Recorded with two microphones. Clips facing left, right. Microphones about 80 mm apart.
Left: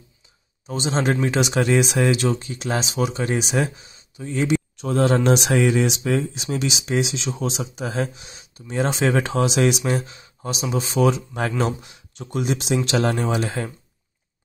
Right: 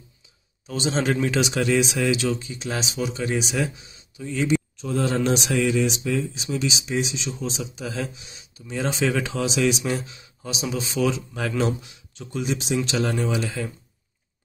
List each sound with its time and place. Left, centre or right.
0.7 s speech: left
3.5 s speech: left
4.8 s speech: left
5.9 s speech: left
7.2 s speech: left
7.6 s speech: left